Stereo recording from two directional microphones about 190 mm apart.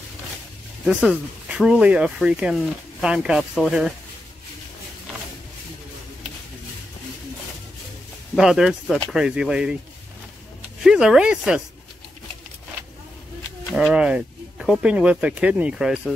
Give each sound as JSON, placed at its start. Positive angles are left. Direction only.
{"t": 0.8, "sound": "speech", "side_deg": -5}
{"t": 8.4, "sound": "speech", "side_deg": 0}
{"t": 10.8, "sound": "speech", "side_deg": -5}
{"t": 13.7, "sound": "speech", "side_deg": 0}